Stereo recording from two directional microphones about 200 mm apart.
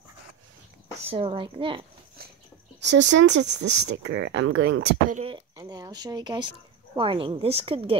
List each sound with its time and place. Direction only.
1.1 s speech: 25° right (ahead or behind)
2.8 s speech: 60° right (ahead or behind)
5.1 s speech: 25° right (ahead or behind)